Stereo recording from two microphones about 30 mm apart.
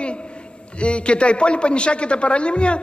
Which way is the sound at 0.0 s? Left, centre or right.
Left.